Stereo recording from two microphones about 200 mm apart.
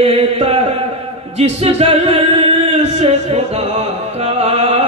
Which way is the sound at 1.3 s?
30° right (ahead or behind).